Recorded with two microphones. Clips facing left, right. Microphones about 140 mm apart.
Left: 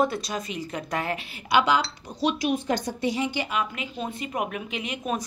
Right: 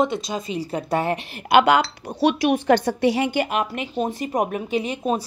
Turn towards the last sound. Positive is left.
turn(degrees=-30)  # may be behind; listen again after turning